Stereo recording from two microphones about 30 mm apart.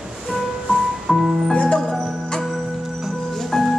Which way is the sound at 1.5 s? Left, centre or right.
Left.